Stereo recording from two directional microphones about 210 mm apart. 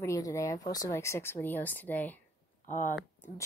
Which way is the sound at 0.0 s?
15° left (ahead or behind).